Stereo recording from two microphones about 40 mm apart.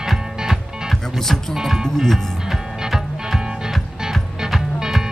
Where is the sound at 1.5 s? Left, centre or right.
Centre.